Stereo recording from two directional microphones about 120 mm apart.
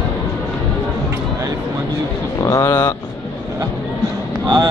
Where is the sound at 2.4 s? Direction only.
25° left (ahead or behind).